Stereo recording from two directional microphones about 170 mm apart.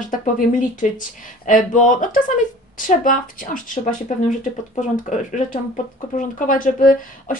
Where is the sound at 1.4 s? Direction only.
50° left (ahead or behind).